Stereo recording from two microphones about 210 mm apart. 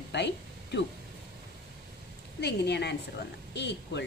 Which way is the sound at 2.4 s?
50° left (ahead or behind).